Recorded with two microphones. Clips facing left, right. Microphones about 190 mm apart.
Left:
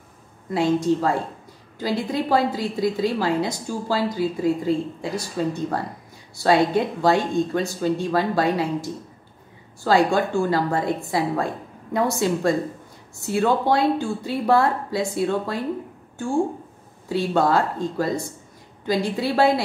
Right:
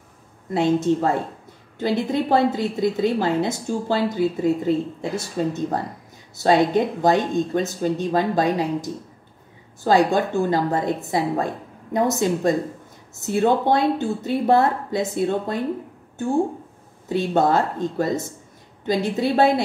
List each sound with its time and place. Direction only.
0.5 s a woman's voice: 25° right (ahead or behind)
17.4 s a woman's voice: 20° right (ahead or behind)